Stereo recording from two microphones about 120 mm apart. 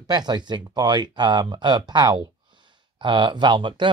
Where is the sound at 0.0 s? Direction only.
35° right (ahead or behind).